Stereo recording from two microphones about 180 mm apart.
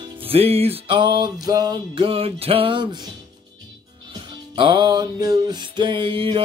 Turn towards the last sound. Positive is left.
turn(degrees=-30)  # may be behind; listen again after turning